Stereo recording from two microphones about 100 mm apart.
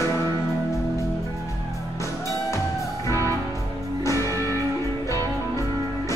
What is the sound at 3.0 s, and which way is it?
Music, 30° left (ahead or behind).